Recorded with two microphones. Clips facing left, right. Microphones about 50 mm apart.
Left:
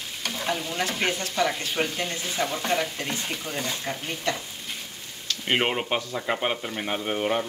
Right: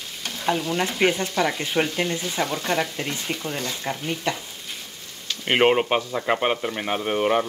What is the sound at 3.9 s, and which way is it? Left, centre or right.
Speech, centre.